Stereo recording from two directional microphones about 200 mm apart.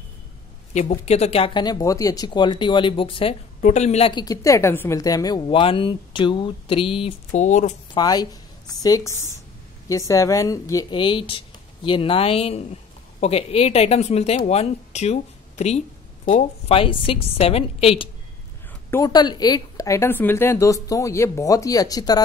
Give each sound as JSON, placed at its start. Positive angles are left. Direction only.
{"t": 0.7, "sound": "speech", "side_deg": 35}
{"t": 7.9, "sound": "a woman's voice", "side_deg": 20}
{"t": 18.9, "sound": "a woman's voice", "side_deg": 15}